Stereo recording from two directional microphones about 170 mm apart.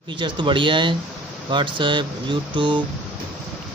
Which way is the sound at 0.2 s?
30° right (ahead or behind).